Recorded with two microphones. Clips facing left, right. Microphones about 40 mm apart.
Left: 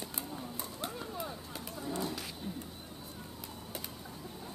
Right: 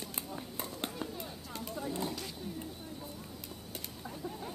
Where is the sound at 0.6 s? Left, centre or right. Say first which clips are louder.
Right 3 dB; right.